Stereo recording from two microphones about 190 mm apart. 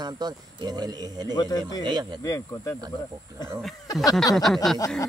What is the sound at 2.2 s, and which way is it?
Speech, 15° left (ahead or behind).